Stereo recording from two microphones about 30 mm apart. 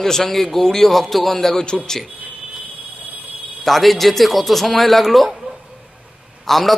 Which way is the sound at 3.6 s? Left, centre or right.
Centre.